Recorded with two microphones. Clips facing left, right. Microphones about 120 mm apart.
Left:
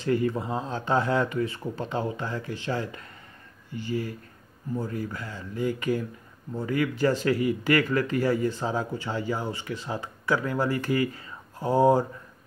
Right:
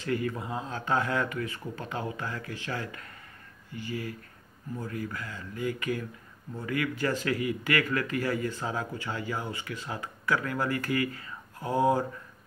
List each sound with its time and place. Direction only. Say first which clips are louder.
0.0 s speech: left 5 dB; 30° left (ahead or behind)
5.1 s speech: left 3 dB; 25° left (ahead or behind)